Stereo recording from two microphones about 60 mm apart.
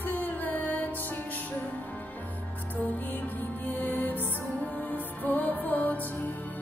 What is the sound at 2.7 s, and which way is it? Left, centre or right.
Music, left.